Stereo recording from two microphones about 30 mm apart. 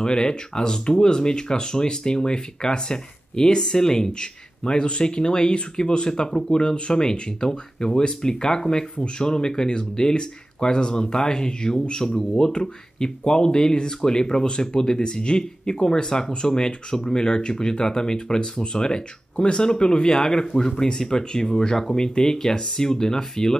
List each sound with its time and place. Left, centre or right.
0.0 s speech: left
6.0 s speech: left